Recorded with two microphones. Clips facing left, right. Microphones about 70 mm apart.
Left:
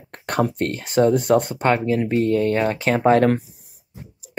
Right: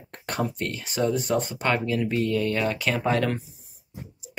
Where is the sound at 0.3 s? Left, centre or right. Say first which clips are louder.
Left 7 dB; left.